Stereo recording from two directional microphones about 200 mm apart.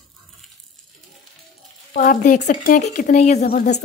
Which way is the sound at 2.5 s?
35° left (ahead or behind).